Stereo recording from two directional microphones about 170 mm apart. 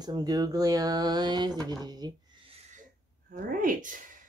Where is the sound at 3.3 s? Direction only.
55° right (ahead or behind).